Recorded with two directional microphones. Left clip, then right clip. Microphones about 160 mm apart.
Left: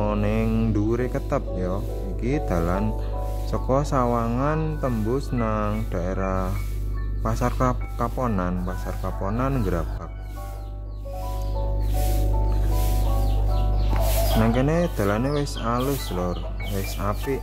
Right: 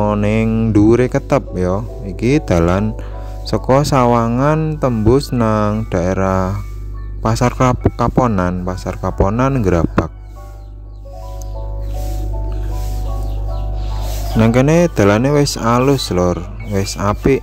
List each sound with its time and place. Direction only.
0.0 s speech: 50° right (ahead or behind)
14.4 s speech: 55° right (ahead or behind)